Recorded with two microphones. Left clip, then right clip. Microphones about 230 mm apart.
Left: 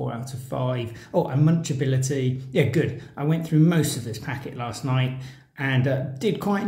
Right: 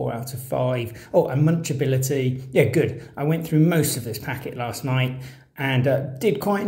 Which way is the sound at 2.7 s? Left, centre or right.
Centre.